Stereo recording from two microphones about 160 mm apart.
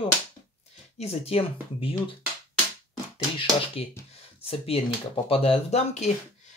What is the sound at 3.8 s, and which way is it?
Speech, 35° left (ahead or behind).